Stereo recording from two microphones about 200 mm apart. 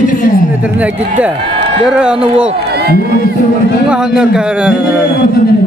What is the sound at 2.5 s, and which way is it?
Crowd, 50° right (ahead or behind).